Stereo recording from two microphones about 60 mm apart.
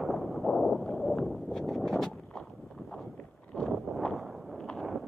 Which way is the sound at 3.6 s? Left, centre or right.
Centre.